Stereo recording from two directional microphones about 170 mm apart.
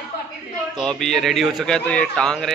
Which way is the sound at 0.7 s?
5° left (ahead or behind).